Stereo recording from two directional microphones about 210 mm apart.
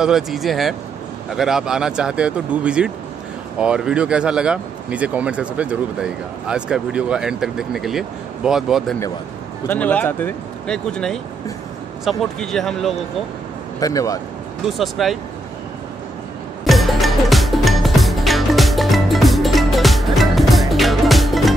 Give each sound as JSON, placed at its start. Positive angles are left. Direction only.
{"t": 0.0, "sound": "speech", "side_deg": 0}
{"t": 13.7, "sound": "speech", "side_deg": 15}
{"t": 14.7, "sound": "speech", "side_deg": 0}
{"t": 16.6, "sound": "music", "side_deg": 0}